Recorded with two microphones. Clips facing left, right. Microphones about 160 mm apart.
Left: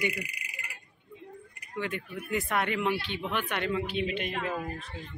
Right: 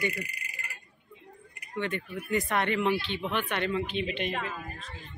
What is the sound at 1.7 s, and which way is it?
Speech, 5° left (ahead or behind).